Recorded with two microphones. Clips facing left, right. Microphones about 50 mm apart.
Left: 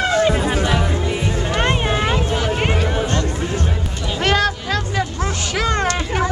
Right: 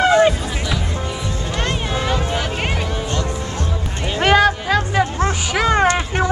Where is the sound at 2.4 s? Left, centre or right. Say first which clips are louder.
Left 3 dB; centre.